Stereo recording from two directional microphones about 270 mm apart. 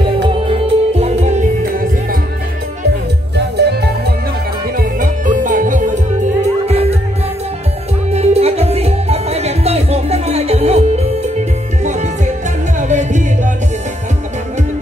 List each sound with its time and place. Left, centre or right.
0.5 s music: right
3.3 s music: right
8.1 s music: right